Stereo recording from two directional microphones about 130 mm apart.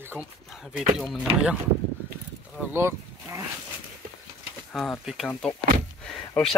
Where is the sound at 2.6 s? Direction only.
20° right (ahead or behind).